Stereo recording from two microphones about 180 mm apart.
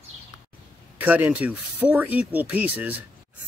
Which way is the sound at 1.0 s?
10° right (ahead or behind).